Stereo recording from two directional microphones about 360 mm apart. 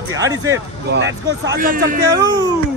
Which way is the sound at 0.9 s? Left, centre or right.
Right.